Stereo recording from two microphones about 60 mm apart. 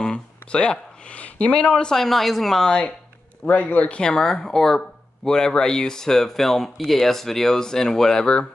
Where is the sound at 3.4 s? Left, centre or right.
Left.